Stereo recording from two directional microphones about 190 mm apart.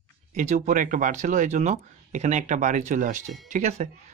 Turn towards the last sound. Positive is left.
turn(degrees=-40)  # may be behind; listen again after turning